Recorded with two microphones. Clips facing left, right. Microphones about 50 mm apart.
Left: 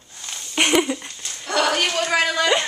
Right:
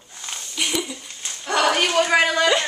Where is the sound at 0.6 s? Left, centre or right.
Left.